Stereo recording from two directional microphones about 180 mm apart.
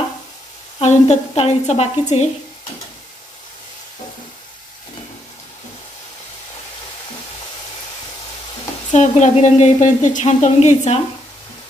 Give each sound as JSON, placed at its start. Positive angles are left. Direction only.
{"t": 0.7, "sound": "a woman's voice", "side_deg": 35}
{"t": 8.9, "sound": "a woman's voice", "side_deg": 40}